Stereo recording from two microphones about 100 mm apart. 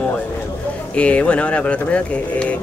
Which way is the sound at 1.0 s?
10° left (ahead or behind).